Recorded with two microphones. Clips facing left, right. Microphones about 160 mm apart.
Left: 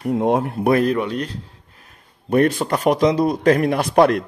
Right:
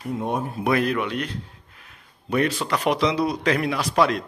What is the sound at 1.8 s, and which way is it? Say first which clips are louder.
A man's voice: left 4 dB; 50° left (ahead or behind).